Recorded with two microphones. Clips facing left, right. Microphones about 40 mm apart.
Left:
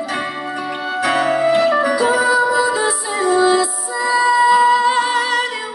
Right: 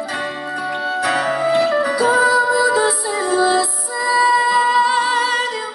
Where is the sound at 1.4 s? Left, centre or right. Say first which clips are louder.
Left 1 dB; left.